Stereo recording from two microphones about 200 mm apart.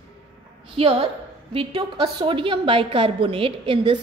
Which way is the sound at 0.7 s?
30° right (ahead or behind).